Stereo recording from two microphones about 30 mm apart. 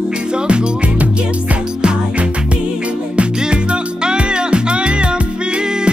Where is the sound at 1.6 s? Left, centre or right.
Right.